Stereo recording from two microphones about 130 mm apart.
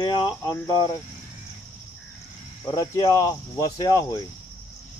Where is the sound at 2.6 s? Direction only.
30° left (ahead or behind).